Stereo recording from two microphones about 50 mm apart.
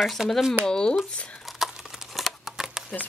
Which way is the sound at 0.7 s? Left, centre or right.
Centre.